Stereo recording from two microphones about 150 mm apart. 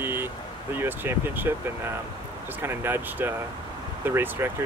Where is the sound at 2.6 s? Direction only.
15° right (ahead or behind).